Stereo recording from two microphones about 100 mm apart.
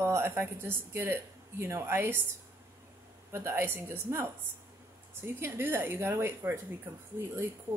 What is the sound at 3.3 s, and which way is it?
A woman's voice, 25° right (ahead or behind).